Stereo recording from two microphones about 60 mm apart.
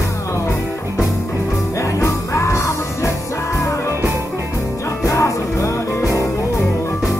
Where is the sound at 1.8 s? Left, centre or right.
Left.